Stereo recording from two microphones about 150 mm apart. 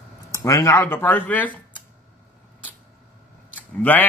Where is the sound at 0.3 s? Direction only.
20° left (ahead or behind).